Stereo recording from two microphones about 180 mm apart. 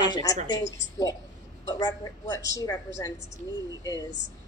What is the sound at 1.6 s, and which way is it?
A woman's voice, 20° left (ahead or behind).